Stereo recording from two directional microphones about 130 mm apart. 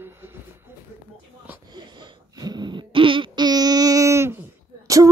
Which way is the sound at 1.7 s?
35° right (ahead or behind).